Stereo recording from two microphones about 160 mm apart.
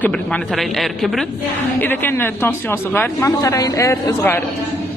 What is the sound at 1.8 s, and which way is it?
A woman's voice, 10° left (ahead or behind).